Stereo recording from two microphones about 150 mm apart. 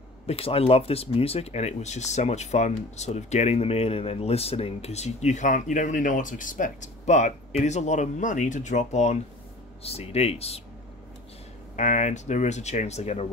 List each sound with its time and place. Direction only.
0.3 s speech: 40° left (ahead or behind)
11.7 s speech: 55° left (ahead or behind)